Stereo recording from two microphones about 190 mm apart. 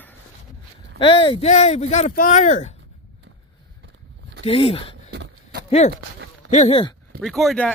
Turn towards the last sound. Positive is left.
turn(degrees=5)  # may be behind; listen again after turning